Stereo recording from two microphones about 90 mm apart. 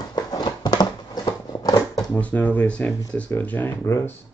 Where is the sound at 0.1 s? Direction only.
50° left (ahead or behind).